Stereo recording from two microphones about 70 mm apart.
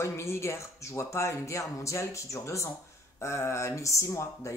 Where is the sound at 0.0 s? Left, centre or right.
Left.